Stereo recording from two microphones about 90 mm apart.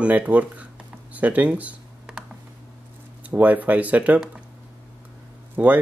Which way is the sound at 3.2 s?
20° right (ahead or behind).